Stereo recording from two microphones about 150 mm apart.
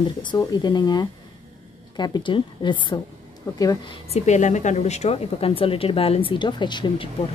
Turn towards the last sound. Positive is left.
turn(degrees=30)  # may be behind; listen again after turning